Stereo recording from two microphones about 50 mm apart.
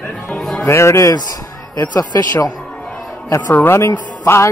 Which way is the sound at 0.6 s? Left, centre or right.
Left.